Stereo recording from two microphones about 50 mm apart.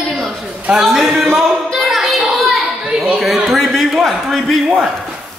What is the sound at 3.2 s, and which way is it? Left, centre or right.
Speech, centre.